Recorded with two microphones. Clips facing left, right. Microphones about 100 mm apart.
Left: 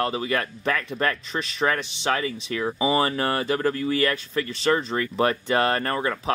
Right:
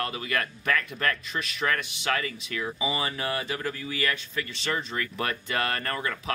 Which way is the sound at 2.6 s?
45° left (ahead or behind).